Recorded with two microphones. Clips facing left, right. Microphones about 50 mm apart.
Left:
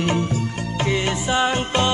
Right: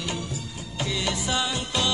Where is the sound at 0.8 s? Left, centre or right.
Left.